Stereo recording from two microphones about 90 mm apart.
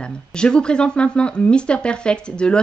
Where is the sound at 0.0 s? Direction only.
10° left (ahead or behind).